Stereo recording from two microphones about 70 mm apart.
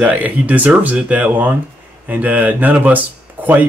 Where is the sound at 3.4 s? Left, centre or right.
Right.